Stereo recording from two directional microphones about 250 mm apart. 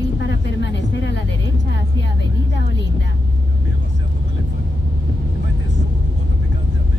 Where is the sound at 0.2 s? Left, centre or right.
Left.